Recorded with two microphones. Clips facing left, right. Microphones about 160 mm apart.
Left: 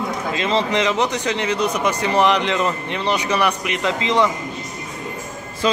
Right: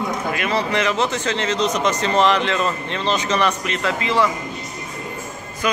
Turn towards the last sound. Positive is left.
turn(degrees=20)  # may be behind; listen again after turning